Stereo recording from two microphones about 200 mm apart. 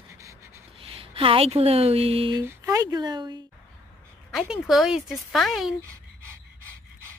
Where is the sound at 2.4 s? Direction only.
15° right (ahead or behind).